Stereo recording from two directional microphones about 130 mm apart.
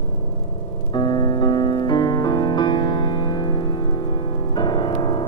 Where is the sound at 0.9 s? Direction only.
35° left (ahead or behind).